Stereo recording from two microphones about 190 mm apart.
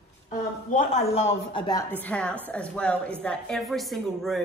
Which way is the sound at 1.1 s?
30° left (ahead or behind).